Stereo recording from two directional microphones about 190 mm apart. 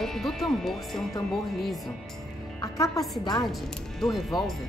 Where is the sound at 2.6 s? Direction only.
20° left (ahead or behind).